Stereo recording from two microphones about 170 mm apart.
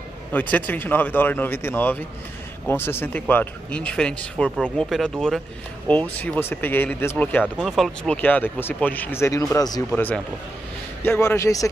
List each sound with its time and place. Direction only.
0.3 s speech: 10° left (ahead or behind)
9.9 s speech: 10° left (ahead or behind)